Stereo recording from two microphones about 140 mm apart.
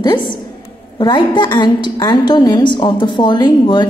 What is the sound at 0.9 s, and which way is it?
A woman's voice, 35° left (ahead or behind).